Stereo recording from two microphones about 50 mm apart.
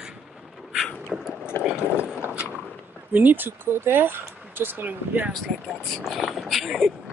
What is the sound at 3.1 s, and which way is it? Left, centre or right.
Speech, right.